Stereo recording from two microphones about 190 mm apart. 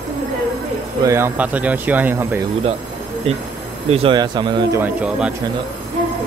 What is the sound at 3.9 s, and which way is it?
Speech, 30° right (ahead or behind).